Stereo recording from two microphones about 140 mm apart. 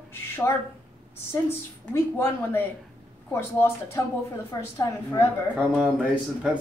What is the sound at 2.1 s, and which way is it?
A woman's voice, 15° left (ahead or behind).